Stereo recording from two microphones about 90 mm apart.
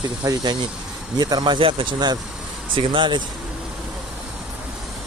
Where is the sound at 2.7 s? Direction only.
70° right (ahead or behind).